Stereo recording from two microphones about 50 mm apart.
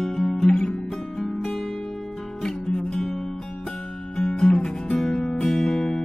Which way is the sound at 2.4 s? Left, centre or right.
Centre.